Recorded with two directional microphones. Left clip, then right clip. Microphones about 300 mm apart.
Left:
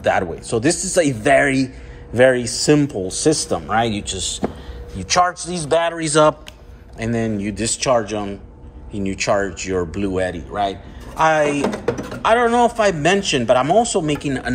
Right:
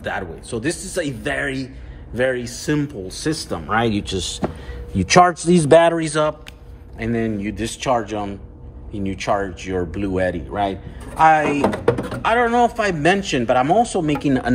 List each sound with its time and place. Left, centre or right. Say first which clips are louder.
0.0 s speech: left 8 dB; centre
5.3 s speech: right 9 dB; right
5.9 s speech: left 5 dB; centre
11.6 s speech: right 3 dB; centre
12.2 s speech: left 3 dB; centre